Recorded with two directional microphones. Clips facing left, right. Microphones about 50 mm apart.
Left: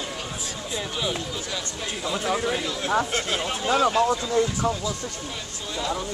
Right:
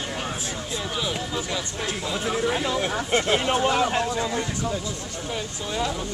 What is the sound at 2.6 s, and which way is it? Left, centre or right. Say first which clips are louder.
Speech: left 1 dB; right.